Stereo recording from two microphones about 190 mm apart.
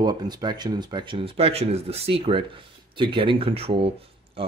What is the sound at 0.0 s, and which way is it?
Speech, 20° right (ahead or behind).